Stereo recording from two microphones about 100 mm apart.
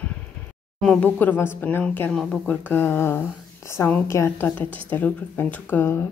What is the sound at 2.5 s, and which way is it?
A woman's voice, 20° left (ahead or behind).